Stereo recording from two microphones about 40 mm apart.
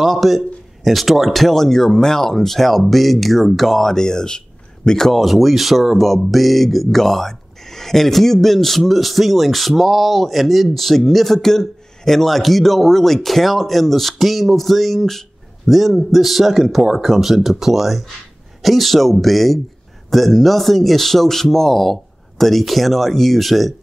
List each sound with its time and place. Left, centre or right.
0.0 s speech: centre
5.1 s speech: centre